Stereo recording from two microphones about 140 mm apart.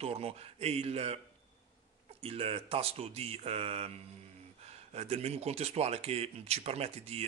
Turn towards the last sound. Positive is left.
turn(degrees=-45)  # may be behind; listen again after turning